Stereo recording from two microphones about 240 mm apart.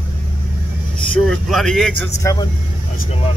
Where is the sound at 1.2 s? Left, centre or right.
Centre.